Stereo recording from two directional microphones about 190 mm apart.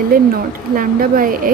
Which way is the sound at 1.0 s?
45° right (ahead or behind).